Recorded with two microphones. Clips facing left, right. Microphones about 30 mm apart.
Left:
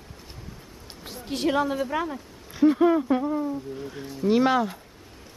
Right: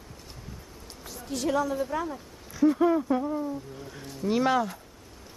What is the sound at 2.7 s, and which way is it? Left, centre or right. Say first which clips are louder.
Speech: left 3 dB; left.